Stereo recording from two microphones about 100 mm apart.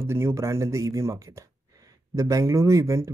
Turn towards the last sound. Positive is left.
turn(degrees=-30)  # may be behind; listen again after turning